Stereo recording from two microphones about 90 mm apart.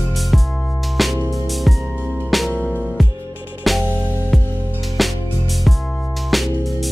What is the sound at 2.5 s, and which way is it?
Music, 15° left (ahead or behind).